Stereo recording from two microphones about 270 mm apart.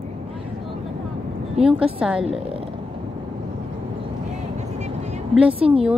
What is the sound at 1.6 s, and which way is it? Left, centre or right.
Speech, centre.